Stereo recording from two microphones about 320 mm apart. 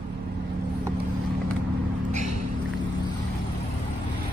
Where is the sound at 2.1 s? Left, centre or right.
Right.